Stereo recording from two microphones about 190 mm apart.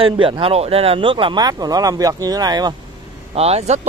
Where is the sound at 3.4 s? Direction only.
35° right (ahead or behind).